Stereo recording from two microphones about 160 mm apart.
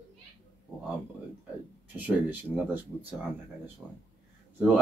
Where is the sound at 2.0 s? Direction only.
10° right (ahead or behind).